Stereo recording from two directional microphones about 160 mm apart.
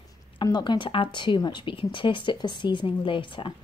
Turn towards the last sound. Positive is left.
turn(degrees=30)  # may be behind; listen again after turning